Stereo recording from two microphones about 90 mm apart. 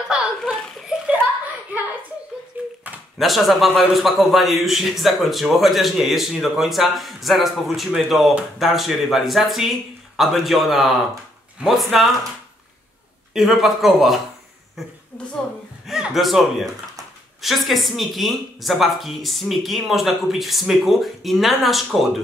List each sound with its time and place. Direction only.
0.1 s a sound: 5° right (ahead or behind)
2.6 s dog: 20° right (ahead or behind)
3.2 s a man's voice: centre (ahead or behind)
13.3 s a man's voice: centre (ahead or behind)
15.9 s a man's voice: 5° right (ahead or behind)